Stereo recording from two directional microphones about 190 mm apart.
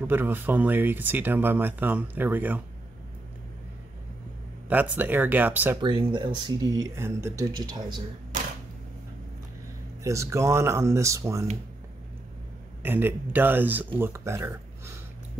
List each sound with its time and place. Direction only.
0.0 s speech: 10° right (ahead or behind)
4.6 s speech: 10° right (ahead or behind)
5.8 s speech: 25° right (ahead or behind)
10.0 s speech: 15° right (ahead or behind)
12.8 s speech: 10° right (ahead or behind)